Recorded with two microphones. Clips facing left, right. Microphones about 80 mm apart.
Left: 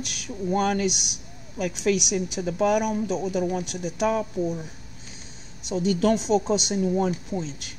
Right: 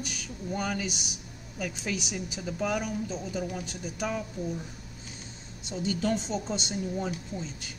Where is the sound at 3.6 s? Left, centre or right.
Left.